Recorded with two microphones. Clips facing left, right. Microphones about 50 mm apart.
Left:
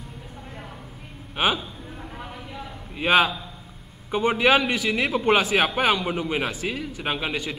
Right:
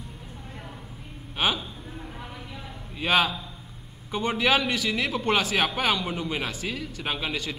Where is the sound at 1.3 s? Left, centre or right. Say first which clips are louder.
Left 3 dB; centre.